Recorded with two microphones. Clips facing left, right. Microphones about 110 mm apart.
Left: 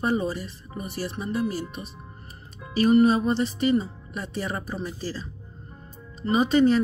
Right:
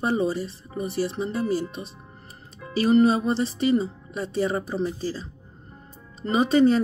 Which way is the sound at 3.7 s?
30° right (ahead or behind).